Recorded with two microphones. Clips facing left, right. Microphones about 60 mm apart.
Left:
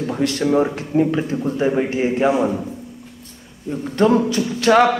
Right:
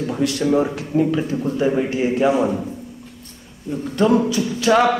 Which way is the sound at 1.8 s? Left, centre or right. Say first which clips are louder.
Even; left.